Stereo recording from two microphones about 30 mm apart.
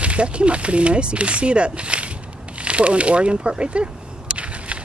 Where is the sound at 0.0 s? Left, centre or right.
Right.